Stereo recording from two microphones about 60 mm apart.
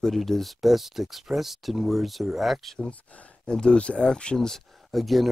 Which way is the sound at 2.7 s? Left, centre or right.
Centre.